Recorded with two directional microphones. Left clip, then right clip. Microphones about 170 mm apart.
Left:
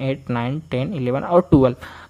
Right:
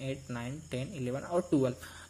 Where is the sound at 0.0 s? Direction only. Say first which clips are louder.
Left 15 dB; 20° left (ahead or behind).